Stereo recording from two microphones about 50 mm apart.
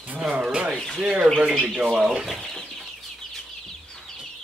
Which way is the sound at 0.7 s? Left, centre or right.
Centre.